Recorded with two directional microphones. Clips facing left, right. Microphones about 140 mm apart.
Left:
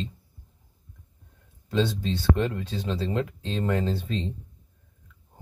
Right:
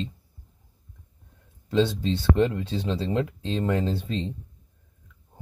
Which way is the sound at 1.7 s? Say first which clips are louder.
Right 3 dB; 25° right (ahead or behind).